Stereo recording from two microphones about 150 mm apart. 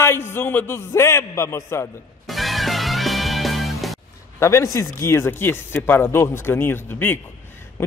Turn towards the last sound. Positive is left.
turn(degrees=15)  # may be behind; listen again after turning